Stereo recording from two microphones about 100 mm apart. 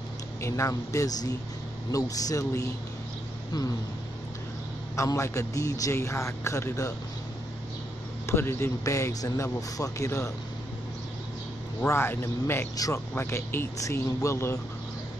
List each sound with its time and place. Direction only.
0.4 s a man's voice: 30° left (ahead or behind)
4.9 s a man's voice: 30° left (ahead or behind)
8.3 s a man's voice: 25° left (ahead or behind)
11.9 s a man's voice: 25° left (ahead or behind)